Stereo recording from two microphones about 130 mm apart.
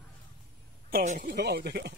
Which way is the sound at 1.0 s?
75° right (ahead or behind).